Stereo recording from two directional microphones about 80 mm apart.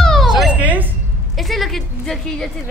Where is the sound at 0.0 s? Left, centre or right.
Centre.